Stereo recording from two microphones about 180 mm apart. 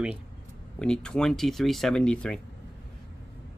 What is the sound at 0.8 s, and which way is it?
Speech, 5° left (ahead or behind).